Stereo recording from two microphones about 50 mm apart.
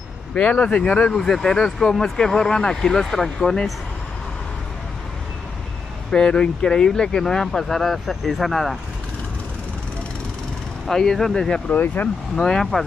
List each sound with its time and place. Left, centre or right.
0.3 s speech: left; by 3.6 s centre
6.1 s speech: centre
10.9 s speech: centre
11.7 s speech: left
12.4 s speech: centre